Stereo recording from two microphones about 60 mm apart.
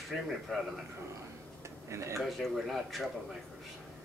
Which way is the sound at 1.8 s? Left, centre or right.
Right.